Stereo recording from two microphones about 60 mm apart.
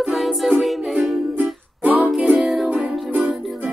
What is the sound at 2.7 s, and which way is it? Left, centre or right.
Music, right.